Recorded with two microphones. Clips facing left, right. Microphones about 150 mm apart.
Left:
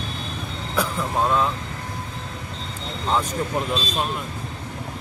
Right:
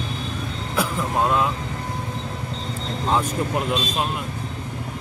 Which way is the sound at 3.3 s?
10° right (ahead or behind).